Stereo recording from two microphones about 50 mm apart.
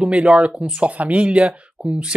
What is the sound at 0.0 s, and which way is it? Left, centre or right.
Speech, right.